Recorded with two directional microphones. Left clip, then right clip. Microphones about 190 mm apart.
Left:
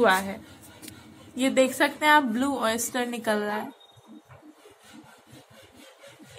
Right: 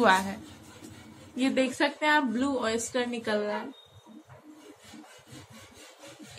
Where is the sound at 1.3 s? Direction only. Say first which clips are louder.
Left 5 dB; 45° left (ahead or behind).